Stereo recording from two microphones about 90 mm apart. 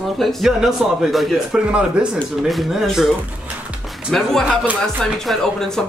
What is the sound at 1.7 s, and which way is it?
Speech, 10° right (ahead or behind).